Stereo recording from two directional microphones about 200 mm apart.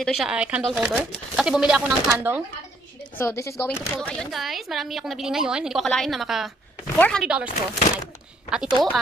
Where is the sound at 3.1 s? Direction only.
15° left (ahead or behind); by 7.5 s 5° right (ahead or behind).